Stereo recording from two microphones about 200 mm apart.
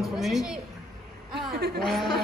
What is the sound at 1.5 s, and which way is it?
Speech, 50° right (ahead or behind).